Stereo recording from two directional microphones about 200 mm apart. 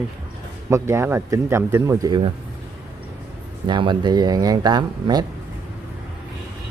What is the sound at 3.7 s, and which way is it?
Speech, 25° right (ahead or behind).